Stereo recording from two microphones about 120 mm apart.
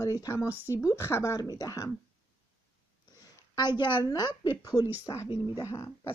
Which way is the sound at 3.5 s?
40° left (ahead or behind).